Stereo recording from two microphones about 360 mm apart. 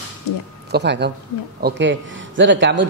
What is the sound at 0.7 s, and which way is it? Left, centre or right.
A man's voice, right.